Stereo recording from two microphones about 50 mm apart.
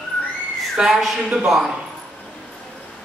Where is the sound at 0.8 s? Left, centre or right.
Centre.